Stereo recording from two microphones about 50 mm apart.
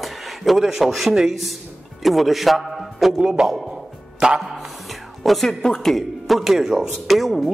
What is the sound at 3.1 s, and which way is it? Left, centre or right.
Speech, centre.